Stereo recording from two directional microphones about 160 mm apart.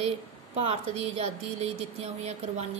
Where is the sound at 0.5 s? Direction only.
40° right (ahead or behind).